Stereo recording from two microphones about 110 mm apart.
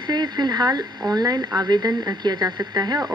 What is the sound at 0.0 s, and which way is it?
Speech, 40° right (ahead or behind).